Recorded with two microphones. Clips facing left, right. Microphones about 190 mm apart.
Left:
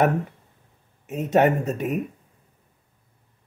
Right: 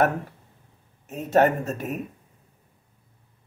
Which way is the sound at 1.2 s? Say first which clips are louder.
Left 1 dB; 20° left (ahead or behind).